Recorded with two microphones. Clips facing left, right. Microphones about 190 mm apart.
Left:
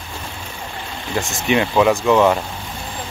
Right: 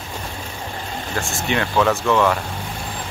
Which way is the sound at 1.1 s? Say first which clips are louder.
Left 5 dB; 15° left (ahead or behind).